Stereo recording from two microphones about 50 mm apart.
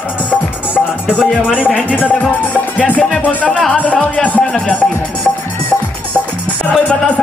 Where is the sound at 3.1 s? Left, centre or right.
Centre.